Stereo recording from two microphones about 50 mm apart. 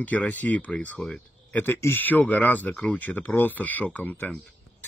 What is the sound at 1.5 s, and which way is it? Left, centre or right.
Speech, left.